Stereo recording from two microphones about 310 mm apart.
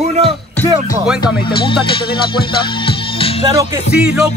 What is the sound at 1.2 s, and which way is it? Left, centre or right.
Music, centre.